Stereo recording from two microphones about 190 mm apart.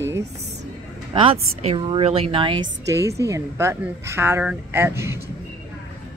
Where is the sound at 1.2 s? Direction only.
30° right (ahead or behind).